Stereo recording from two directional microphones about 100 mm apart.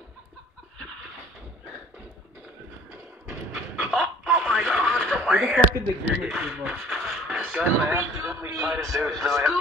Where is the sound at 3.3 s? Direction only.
15° right (ahead or behind).